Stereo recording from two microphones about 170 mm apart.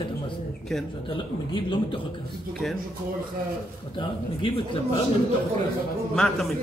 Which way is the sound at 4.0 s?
30° left (ahead or behind).